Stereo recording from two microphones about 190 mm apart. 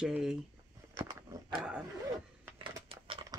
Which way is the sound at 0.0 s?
5° right (ahead or behind).